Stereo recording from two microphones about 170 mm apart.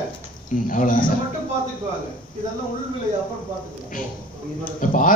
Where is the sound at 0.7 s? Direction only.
50° left (ahead or behind).